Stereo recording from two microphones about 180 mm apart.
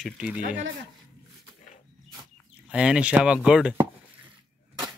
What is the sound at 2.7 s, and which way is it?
Speech, 5° right (ahead or behind).